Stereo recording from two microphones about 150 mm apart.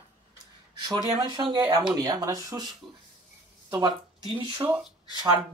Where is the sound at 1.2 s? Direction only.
30° right (ahead or behind).